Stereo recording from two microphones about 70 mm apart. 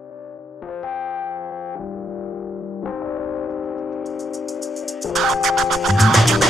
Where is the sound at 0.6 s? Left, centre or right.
Centre.